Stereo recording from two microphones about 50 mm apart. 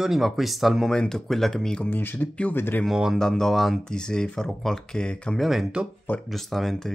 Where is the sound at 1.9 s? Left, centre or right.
Left.